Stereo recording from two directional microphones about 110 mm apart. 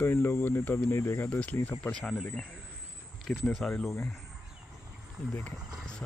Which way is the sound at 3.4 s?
10° left (ahead or behind).